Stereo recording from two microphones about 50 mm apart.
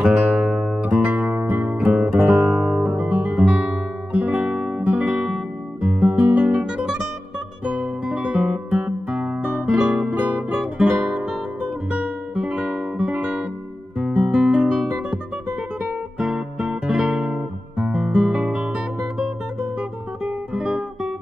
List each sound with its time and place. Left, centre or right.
0.0 s guitar: centre
0.8 s music: right
2.1 s guitar: centre
2.5 s music: centre
2.8 s guitar: right
4.8 s music: right
5.8 s guitar: right
7.6 s guitar: right
11.9 s guitar: right
12.9 s music: right
14.0 s guitar: right
20.6 s guitar: right